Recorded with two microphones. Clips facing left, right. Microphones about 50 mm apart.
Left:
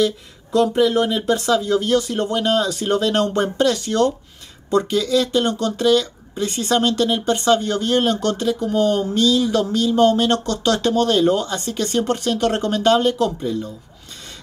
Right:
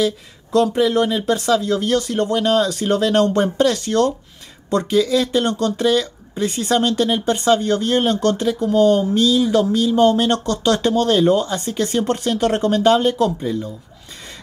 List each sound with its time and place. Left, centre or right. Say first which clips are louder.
0.7 s speech: even; centre
4.9 s speech: right 5 dB; centre